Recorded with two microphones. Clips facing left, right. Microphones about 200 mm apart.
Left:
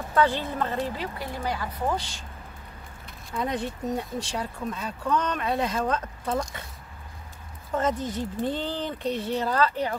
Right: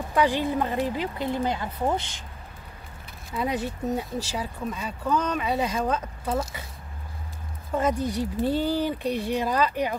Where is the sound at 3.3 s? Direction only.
5° right (ahead or behind).